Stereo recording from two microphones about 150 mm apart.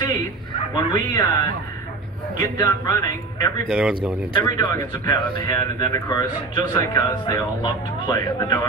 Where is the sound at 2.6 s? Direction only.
25° left (ahead or behind).